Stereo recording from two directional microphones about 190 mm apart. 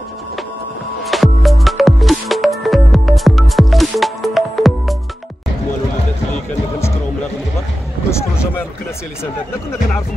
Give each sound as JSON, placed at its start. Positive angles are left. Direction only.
{"t": 1.0, "sound": "music", "side_deg": 0}